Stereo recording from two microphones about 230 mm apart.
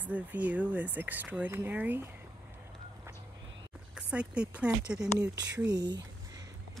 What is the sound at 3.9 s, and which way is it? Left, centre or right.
Speech, centre.